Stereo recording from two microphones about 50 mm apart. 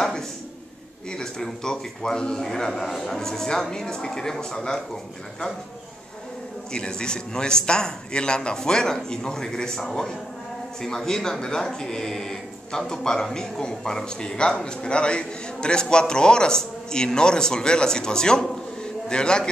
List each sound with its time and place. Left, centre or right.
1.1 s speech: centre
6.7 s speech: centre